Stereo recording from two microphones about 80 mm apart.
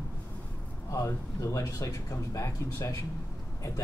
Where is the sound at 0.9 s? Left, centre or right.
Left.